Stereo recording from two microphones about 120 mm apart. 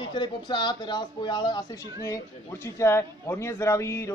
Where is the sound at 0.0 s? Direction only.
40° left (ahead or behind).